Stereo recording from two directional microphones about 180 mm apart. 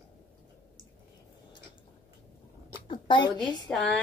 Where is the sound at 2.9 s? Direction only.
25° left (ahead or behind).